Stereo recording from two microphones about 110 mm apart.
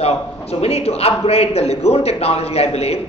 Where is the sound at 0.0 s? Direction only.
70° left (ahead or behind).